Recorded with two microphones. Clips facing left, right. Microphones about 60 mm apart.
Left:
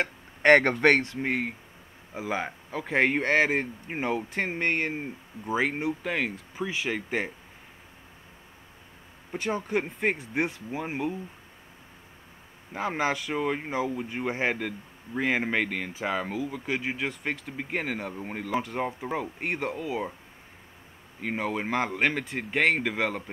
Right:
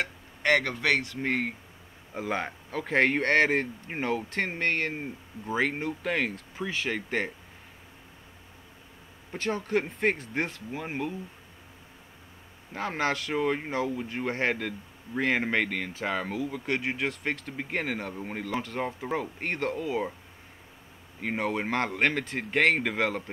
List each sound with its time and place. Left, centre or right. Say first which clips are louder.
0.0 s speech: left 6 dB; left
1.2 s speech: even; centre
9.4 s speech: even; centre
12.7 s speech: left 1 dB; centre
18.9 s speech: even; centre
21.2 s speech: even; centre